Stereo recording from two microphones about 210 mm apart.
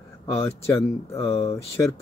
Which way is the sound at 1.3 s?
30° left (ahead or behind).